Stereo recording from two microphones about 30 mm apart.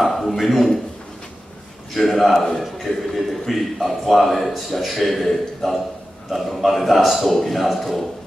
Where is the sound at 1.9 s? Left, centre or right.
Centre.